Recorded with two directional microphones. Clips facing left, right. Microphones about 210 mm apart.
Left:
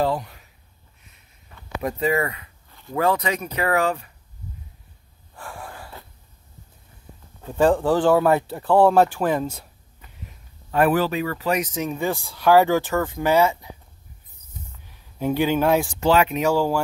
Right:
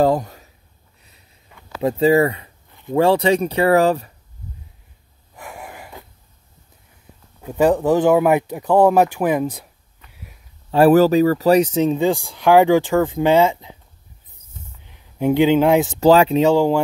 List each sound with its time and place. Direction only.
0.0 s a sound: 45° right (ahead or behind)
1.8 s speech: 30° right (ahead or behind)
5.3 s breathing: 20° right (ahead or behind)
7.4 s speech: 10° right (ahead or behind)
10.1 s a sound: 10° right (ahead or behind)
10.7 s speech: 35° right (ahead or behind)
12.0 s speech: 15° right (ahead or behind)
14.9 s speech: 15° right (ahead or behind)
16.0 s speech: 35° right (ahead or behind); by 16.8 s 20° right (ahead or behind)